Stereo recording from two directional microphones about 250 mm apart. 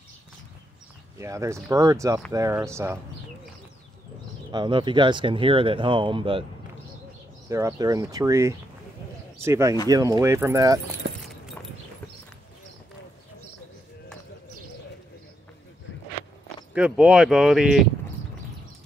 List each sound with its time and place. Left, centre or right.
1.2 s speech: centre
4.5 s speech: centre
7.4 s speech: centre
11.0 s clip-clop: right
16.7 s speech: centre